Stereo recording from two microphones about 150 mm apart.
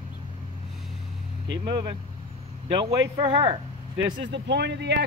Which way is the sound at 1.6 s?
30° right (ahead or behind).